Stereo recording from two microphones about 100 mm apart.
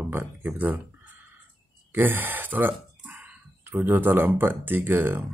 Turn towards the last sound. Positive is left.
turn(degrees=-20)  # may be behind; listen again after turning